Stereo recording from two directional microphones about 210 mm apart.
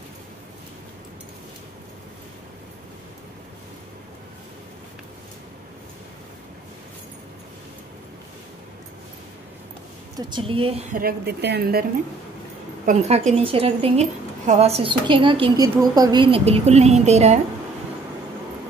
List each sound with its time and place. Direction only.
10.1 s a woman's voice: 25° right (ahead or behind)
10.9 s a woman's voice: 45° right (ahead or behind)
12.8 s a woman's voice: 35° right (ahead or behind)